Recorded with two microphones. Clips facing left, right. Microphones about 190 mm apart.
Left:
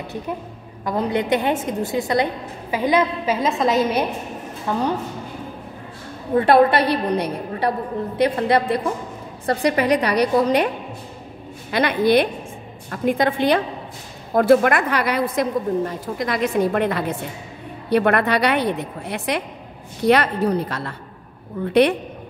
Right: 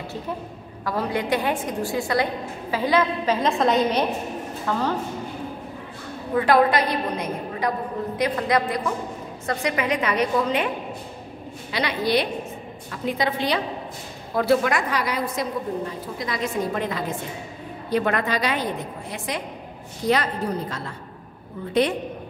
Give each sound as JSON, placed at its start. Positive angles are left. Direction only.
{"t": 0.8, "sound": "a woman's voice", "side_deg": 20}
{"t": 3.4, "sound": "a woman's voice", "side_deg": 0}
{"t": 4.7, "sound": "a woman's voice", "side_deg": 15}
{"t": 6.3, "sound": "a woman's voice", "side_deg": 30}
{"t": 11.7, "sound": "a woman's voice", "side_deg": 50}
{"t": 15.8, "sound": "a woman's voice", "side_deg": 45}
{"t": 16.3, "sound": "a woman's voice", "side_deg": 65}